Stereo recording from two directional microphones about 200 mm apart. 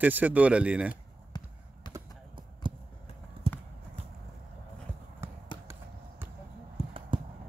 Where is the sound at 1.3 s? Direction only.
20° left (ahead or behind).